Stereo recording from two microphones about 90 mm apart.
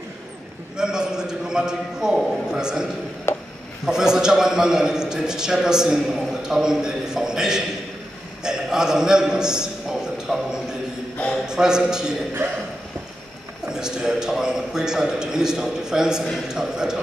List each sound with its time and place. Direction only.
0.7 s a man's voice: 10° right (ahead or behind)
3.3 s a sound: 30° left (ahead or behind)
3.8 s a man's voice: 5° right (ahead or behind)
8.5 s a sound: 5° right (ahead or behind)
11.4 s a man's voice: 5° right (ahead or behind)
13.7 s a man's voice: 5° right (ahead or behind)